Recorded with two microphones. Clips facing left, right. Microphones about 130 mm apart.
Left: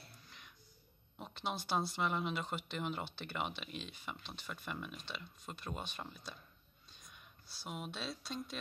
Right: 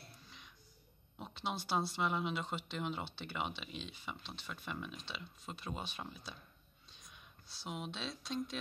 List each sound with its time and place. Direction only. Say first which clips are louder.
0.2 s music: right 1 dB; centre (ahead or behind)
1.1 s speech: even; centre (ahead or behind)